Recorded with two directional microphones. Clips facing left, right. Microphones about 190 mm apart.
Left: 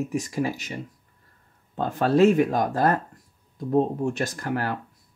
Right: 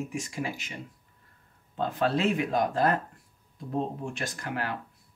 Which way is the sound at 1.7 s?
45° left (ahead or behind).